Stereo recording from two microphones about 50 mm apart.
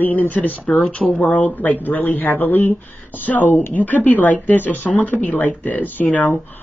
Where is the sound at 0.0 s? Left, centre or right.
Left.